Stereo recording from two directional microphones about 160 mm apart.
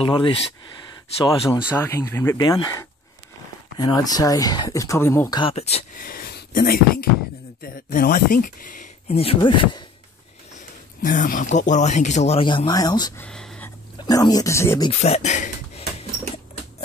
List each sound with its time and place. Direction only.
0.0 s speech: 35° left (ahead or behind)
1.7 s speech: 15° left (ahead or behind)
5.3 s speech: 35° left (ahead or behind)
5.9 s speech: 65° left (ahead or behind)
9.1 s speech: 35° left (ahead or behind)
11.0 s speech: 55° left (ahead or behind)
12.4 s speech: 30° left (ahead or behind)
13.2 s a sound: 5° left (ahead or behind)
13.9 s speech: 25° left (ahead or behind)
14.9 s a sound: 40° left (ahead or behind)